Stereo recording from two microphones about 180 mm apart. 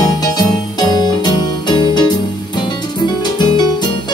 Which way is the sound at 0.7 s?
25° left (ahead or behind).